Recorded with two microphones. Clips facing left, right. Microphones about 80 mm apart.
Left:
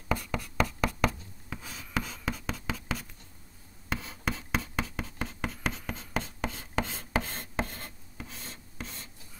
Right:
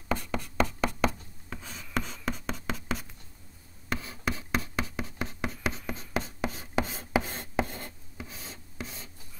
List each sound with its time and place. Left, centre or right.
0.1 s a sound: centre
1.5 s writing: centre
6.9 s writing: centre
8.2 s writing: centre